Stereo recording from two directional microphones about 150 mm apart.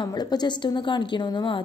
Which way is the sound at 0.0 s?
25° left (ahead or behind).